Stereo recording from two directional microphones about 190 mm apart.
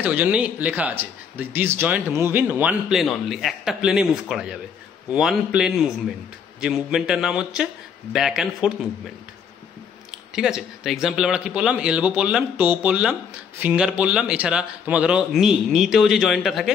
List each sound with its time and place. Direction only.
0.0 s speech: 10° right (ahead or behind)
10.3 s speech: 5° right (ahead or behind)